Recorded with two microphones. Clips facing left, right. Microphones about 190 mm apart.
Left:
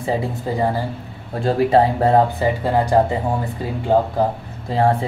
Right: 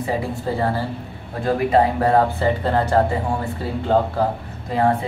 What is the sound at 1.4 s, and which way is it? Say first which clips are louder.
Speech: left 2 dB; 25° left (ahead or behind).